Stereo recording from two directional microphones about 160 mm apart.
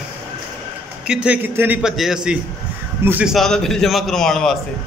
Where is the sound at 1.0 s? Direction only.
5° right (ahead or behind).